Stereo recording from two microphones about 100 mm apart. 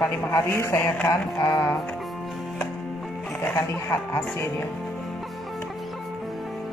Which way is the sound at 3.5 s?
25° left (ahead or behind).